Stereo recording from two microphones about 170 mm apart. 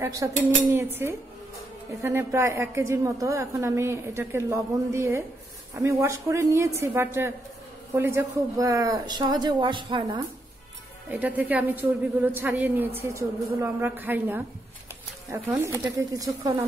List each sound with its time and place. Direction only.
0.0 s a woman's voice: 20° right (ahead or behind)
2.0 s a woman's voice: 15° right (ahead or behind)
11.1 s a woman's voice: 10° right (ahead or behind)